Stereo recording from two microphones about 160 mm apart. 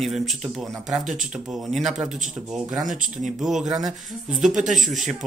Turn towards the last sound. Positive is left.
turn(degrees=0)  # may be behind; listen again after turning